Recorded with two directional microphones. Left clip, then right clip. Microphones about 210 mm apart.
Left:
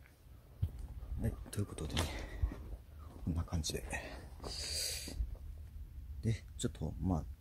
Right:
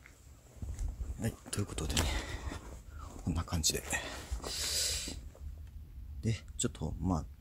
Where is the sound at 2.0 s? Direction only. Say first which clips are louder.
Right 7 dB; 10° right (ahead or behind).